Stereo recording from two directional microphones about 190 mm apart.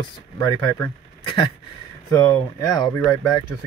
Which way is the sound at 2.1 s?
20° left (ahead or behind).